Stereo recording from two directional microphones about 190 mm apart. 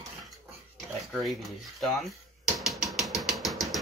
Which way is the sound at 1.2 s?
Centre (ahead or behind).